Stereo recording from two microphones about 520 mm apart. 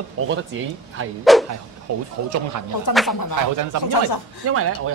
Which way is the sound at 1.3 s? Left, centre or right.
Centre.